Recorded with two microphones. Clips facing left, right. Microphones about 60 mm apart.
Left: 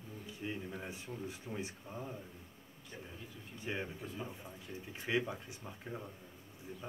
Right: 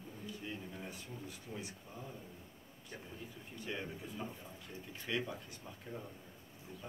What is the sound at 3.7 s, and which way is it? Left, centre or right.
Speech, left.